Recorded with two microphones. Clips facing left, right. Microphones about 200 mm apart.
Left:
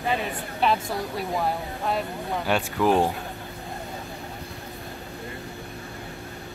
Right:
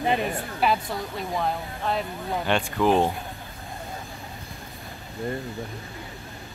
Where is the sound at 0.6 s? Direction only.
5° right (ahead or behind).